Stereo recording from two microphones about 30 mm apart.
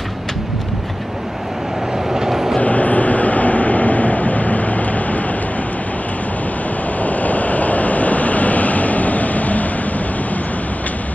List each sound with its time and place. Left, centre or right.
2.1 s train: centre
2.6 s vehicle: left
7.0 s vehicle: left